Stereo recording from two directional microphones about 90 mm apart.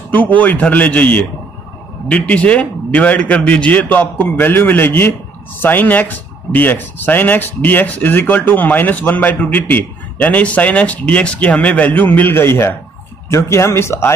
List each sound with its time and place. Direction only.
0.1 s speech: 20° left (ahead or behind)